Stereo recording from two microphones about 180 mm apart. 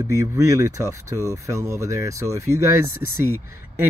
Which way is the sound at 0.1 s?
20° right (ahead or behind).